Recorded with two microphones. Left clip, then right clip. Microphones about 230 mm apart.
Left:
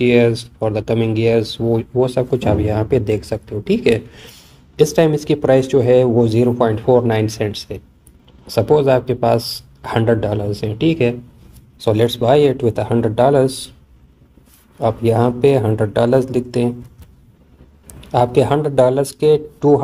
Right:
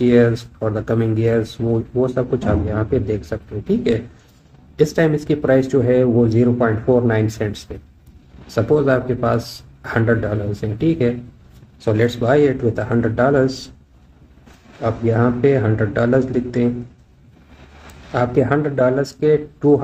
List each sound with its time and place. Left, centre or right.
0.1 s speech: centre
12.0 s speech: centre
15.1 s speech: centre
18.1 s speech: centre